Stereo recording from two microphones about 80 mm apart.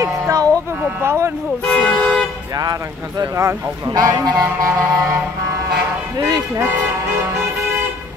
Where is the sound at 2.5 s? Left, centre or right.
Right.